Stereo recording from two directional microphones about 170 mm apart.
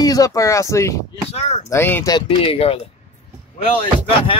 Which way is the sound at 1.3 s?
40° left (ahead or behind).